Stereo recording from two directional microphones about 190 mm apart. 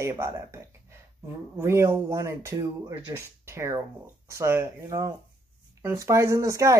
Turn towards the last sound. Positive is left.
turn(degrees=-15)  # may be behind; listen again after turning